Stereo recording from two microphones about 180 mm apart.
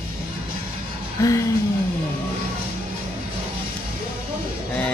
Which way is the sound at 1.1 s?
20° left (ahead or behind).